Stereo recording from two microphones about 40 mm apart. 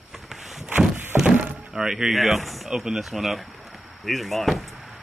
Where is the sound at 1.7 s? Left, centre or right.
Centre.